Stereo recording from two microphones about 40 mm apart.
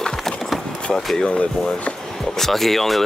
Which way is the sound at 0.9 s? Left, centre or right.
Centre.